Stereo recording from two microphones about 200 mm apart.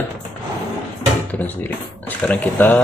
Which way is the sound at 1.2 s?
10° left (ahead or behind).